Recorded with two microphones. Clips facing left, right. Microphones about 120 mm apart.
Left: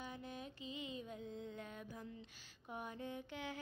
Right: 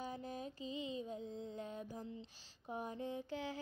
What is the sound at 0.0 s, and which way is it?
Mantra, 35° right (ahead or behind).